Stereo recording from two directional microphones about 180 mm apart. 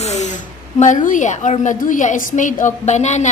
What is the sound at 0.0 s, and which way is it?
Speech, 40° left (ahead or behind).